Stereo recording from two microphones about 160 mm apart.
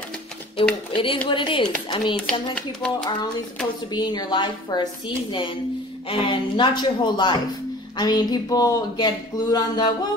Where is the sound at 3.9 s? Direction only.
25° left (ahead or behind).